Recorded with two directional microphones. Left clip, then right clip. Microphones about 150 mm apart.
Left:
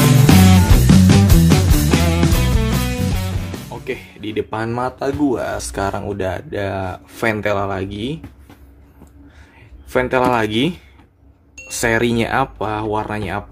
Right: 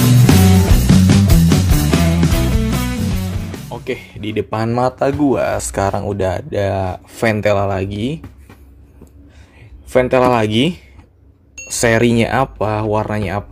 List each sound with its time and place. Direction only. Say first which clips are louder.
0.0 s music: left 1 dB; centre (ahead or behind)
3.7 s speech: right 4 dB; 30° right (ahead or behind)
9.8 s speech: right 4 dB; 20° right (ahead or behind)